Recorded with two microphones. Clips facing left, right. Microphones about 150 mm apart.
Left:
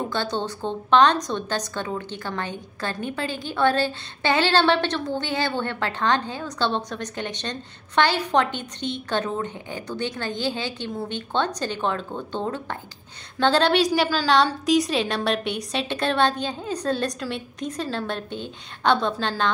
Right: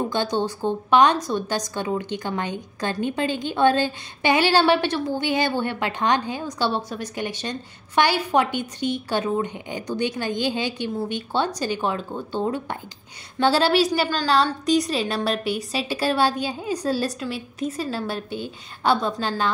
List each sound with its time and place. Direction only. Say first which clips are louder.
0.1 s a woman's voice: right 3 dB; 15° right (ahead or behind)